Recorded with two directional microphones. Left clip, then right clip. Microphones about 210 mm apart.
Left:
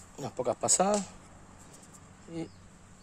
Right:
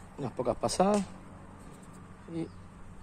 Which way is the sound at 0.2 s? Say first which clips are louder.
Even; 35° left (ahead or behind).